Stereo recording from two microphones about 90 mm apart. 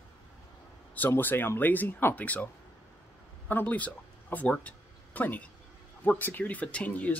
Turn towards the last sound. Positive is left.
turn(degrees=15)  # may be behind; listen again after turning